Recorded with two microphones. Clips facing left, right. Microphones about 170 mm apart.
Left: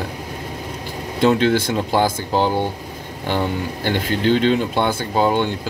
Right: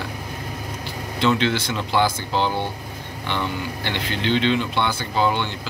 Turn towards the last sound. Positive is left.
turn(degrees=45)  # may be behind; listen again after turning